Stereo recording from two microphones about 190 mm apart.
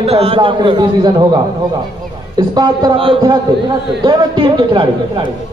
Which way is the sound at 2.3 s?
20° right (ahead or behind).